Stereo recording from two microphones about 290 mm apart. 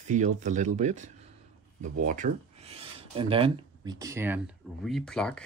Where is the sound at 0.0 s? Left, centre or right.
Right.